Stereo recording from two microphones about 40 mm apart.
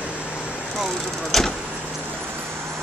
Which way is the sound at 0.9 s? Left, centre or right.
Centre.